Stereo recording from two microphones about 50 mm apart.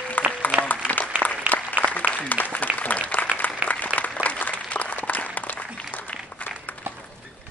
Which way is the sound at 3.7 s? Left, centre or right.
Left.